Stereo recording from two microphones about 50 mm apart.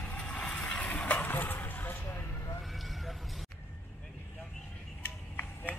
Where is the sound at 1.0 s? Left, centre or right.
Left.